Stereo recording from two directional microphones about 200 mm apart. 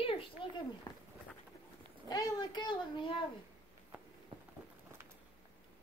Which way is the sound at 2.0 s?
20° left (ahead or behind).